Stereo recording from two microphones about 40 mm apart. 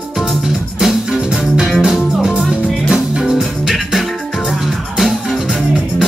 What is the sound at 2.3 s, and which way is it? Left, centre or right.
Music, right.